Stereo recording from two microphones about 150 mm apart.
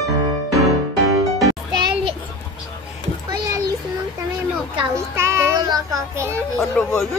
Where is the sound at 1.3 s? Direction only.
30° right (ahead or behind).